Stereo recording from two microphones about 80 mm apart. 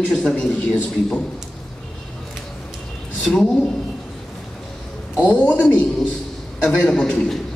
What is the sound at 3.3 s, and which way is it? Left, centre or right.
Speech, centre.